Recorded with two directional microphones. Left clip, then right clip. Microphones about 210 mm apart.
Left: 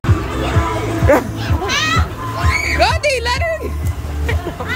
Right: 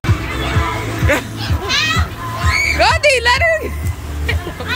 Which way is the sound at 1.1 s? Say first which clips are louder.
Left 4 dB; 25° left (ahead or behind).